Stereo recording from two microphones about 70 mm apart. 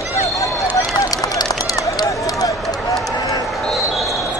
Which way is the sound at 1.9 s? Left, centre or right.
Left.